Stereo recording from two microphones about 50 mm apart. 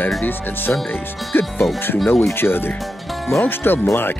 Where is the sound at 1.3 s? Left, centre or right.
Left.